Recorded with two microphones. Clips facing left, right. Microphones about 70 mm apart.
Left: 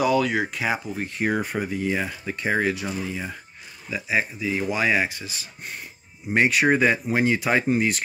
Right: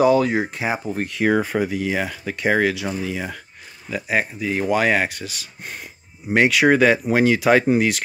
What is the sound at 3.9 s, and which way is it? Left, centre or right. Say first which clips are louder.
Speech: right 3 dB; right.